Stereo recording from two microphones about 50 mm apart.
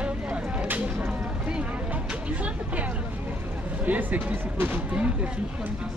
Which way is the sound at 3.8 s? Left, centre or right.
Right.